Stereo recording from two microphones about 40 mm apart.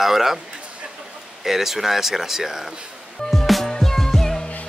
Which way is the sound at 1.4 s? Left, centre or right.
Centre.